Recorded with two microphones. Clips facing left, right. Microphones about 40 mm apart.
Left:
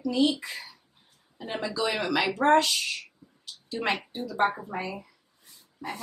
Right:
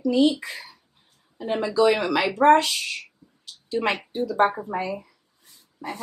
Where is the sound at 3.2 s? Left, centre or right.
Centre.